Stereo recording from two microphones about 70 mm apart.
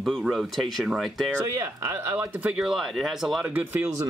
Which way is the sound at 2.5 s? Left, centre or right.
Centre.